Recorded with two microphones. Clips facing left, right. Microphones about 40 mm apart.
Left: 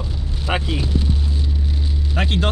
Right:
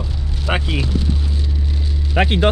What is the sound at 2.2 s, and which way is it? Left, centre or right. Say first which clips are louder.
Speech: right 6 dB; right.